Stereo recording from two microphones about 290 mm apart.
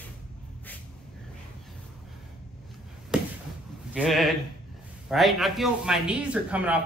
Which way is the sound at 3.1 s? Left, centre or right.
Centre.